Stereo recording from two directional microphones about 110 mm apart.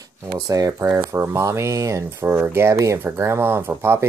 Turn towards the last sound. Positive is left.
turn(degrees=-20)  # may be behind; listen again after turning